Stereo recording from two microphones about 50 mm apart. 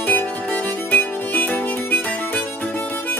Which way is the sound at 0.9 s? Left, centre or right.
Left.